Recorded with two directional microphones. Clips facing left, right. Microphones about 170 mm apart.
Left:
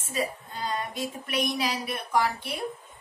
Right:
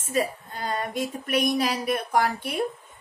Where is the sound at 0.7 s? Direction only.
50° right (ahead or behind).